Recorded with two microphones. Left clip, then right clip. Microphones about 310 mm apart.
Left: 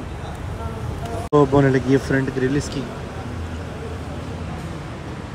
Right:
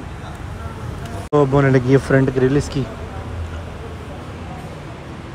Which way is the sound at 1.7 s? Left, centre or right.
Centre.